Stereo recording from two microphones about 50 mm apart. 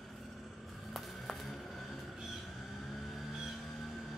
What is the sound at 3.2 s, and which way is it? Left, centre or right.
Vehicle, centre.